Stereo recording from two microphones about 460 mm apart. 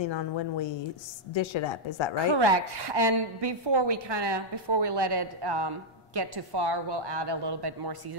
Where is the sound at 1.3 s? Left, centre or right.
Left.